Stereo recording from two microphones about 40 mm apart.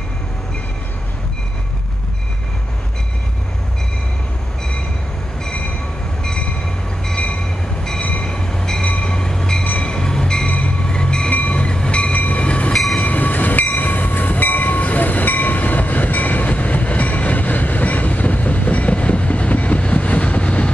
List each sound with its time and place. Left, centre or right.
8.0 s train: left
8.3 s train: centre
12.7 s train: centre
13.0 s train: left